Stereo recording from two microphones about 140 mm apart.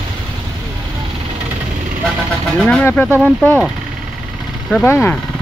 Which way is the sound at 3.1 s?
10° left (ahead or behind).